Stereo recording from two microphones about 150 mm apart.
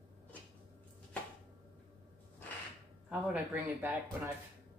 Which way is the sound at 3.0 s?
10° right (ahead or behind).